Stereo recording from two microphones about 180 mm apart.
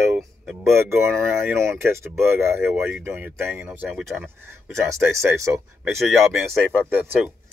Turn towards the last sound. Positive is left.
turn(degrees=-10)  # may be behind; listen again after turning